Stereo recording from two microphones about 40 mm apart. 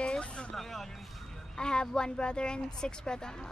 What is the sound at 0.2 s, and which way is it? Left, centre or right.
Vehicle, left.